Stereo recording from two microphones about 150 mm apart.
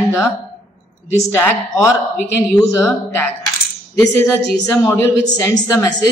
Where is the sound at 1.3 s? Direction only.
15° left (ahead or behind).